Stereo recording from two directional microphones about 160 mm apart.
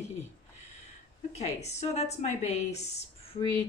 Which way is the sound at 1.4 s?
45° left (ahead or behind).